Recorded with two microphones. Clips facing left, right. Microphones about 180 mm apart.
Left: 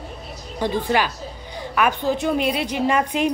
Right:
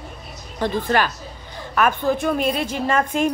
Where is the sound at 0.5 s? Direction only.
15° left (ahead or behind).